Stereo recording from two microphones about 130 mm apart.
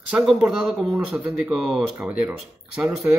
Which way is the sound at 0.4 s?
5° right (ahead or behind).